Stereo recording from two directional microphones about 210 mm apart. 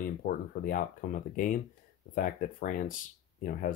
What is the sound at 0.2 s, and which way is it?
Speech, 45° left (ahead or behind).